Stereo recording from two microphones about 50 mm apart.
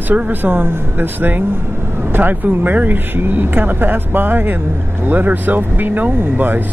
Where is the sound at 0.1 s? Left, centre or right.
Right.